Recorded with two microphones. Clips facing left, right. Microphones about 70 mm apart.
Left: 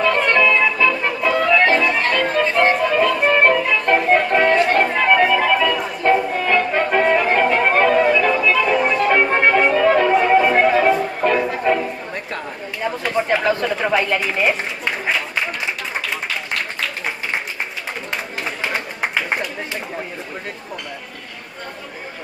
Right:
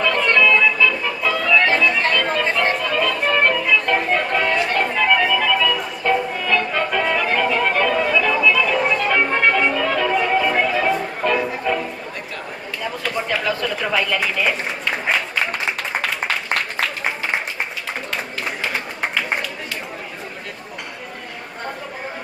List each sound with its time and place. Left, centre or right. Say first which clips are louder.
0.0 s music: left 1 dB; left
11.0 s music: left 2 dB; centre
12.8 s a sound: left 4 dB; left